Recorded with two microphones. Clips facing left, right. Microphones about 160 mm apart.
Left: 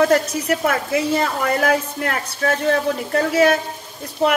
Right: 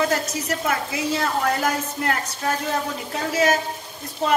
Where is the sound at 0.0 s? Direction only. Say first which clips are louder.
Left 7 dB; 60° left (ahead or behind).